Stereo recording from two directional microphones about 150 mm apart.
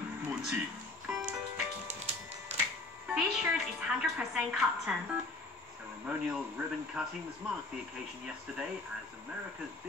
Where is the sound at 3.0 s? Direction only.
5° right (ahead or behind).